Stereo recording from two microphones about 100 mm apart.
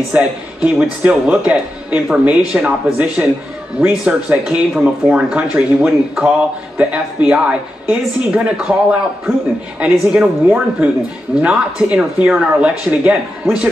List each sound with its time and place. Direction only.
0.1 s speech: 10° right (ahead or behind)
9.8 s speech: 10° right (ahead or behind)